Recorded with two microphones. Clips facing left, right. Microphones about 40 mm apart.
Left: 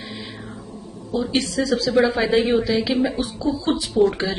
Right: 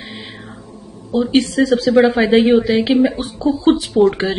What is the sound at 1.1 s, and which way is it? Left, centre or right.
A woman's voice, right.